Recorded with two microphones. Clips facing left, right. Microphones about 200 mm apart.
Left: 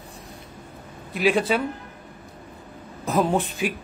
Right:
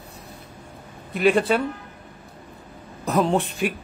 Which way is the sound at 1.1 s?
Centre (ahead or behind).